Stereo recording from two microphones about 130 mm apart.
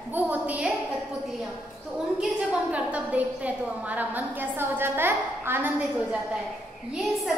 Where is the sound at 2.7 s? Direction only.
10° right (ahead or behind).